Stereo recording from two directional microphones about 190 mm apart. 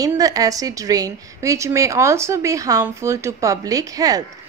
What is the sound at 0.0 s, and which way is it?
A woman's voice, 20° right (ahead or behind).